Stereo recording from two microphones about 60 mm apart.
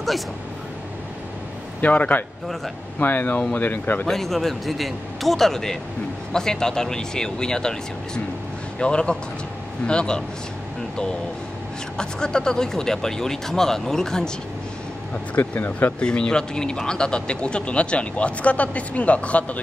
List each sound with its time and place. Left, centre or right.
1.8 s speech: left
4.0 s a man's voice: centre
12.0 s speech: centre
15.3 s speech: left
16.0 s speech: centre